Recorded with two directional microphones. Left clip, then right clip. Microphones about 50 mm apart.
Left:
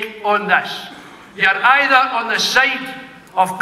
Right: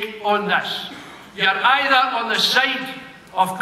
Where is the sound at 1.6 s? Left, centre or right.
Centre.